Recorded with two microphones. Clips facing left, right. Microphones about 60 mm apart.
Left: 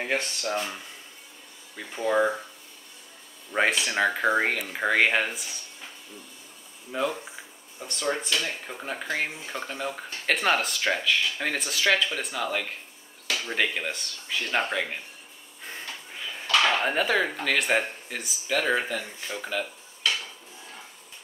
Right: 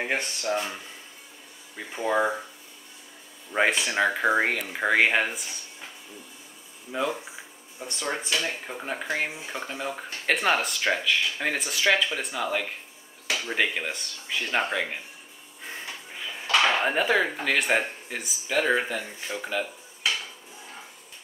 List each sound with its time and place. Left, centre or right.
0.0 s speech: centre
1.8 s speech: centre
3.7 s speech: centre
6.9 s speech: centre
15.6 s a sound: centre
16.4 s dishes: centre
16.8 s speech: centre